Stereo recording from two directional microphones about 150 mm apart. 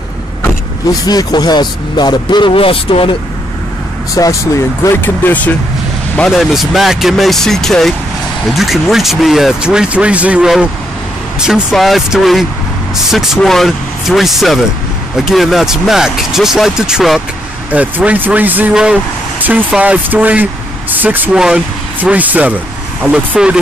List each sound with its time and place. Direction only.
1.0 s speech: 25° left (ahead or behind)
4.1 s speech: 20° left (ahead or behind)
6.3 s speech: centre (ahead or behind)